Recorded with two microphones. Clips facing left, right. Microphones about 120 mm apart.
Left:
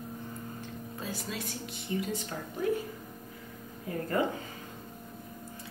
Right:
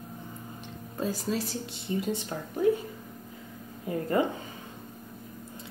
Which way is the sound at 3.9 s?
25° right (ahead or behind).